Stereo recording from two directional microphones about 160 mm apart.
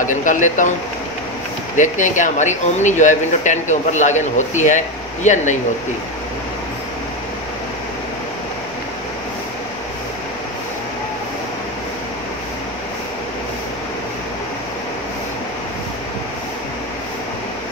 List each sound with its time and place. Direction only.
0.0 s speech: 55° left (ahead or behind)
1.8 s speech: 50° left (ahead or behind)